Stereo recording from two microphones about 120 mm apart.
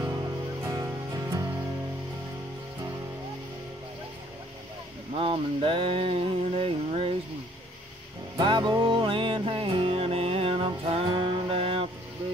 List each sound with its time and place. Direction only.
0.7 s music: 30° right (ahead or behind)
5.1 s a sound: 50° right (ahead or behind)
8.4 s music: 40° right (ahead or behind)